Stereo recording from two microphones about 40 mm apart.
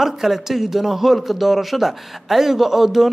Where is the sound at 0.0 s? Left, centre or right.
Centre.